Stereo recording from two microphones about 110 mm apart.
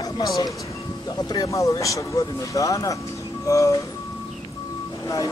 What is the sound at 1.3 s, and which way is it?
Speech, 30° left (ahead or behind).